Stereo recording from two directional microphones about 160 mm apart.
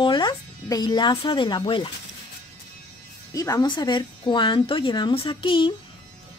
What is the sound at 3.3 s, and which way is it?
A woman's voice, 20° left (ahead or behind).